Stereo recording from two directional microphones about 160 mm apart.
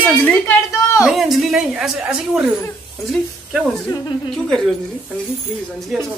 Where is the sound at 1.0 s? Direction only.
Centre (ahead or behind).